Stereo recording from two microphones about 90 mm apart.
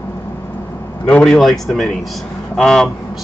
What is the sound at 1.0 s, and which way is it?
Speech, 10° left (ahead or behind).